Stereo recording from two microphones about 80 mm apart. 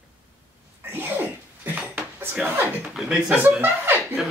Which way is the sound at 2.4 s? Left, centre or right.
Right.